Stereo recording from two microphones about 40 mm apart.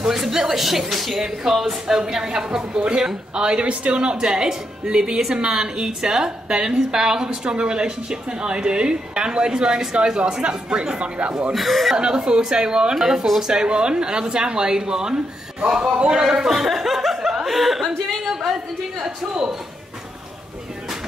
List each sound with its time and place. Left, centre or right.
0.0 s a woman's voice: centre
11.5 s speech: centre
12.0 s a woman's voice: right; by 17.9 s centre
18.0 s a sound: centre
18.5 s speech: centre